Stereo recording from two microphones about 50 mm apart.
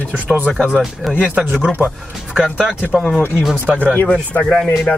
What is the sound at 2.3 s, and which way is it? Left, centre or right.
Speech, centre.